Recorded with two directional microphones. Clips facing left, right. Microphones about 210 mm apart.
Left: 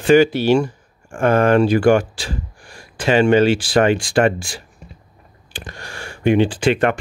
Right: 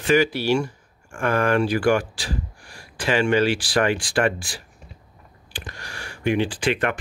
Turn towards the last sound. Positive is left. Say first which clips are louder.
# left 6 dB
turn(degrees=30)  # may be behind; listen again after turning